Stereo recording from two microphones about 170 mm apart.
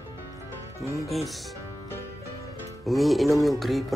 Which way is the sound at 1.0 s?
Centre (ahead or behind).